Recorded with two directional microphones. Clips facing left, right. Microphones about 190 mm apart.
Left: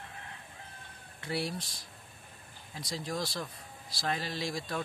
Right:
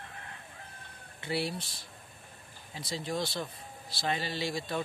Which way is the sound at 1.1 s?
Centre (ahead or behind).